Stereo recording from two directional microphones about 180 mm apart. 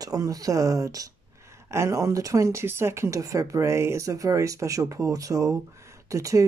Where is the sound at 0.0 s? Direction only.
20° right (ahead or behind).